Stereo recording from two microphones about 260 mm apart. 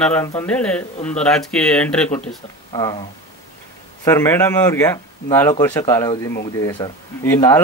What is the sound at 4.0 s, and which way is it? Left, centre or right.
Speech, centre.